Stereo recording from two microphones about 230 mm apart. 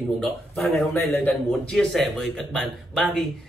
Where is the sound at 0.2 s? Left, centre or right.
Centre.